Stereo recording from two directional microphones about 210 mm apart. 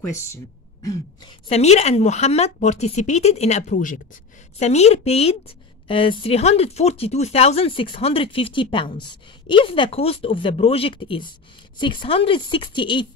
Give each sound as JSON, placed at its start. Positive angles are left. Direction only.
{"t": 1.5, "sound": "speech", "side_deg": 30}